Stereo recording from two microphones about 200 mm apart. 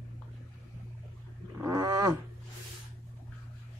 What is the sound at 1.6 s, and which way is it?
Wild animals, 15° right (ahead or behind).